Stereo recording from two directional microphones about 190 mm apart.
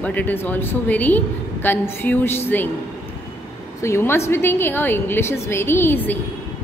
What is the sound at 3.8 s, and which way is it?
A woman's voice, 15° left (ahead or behind).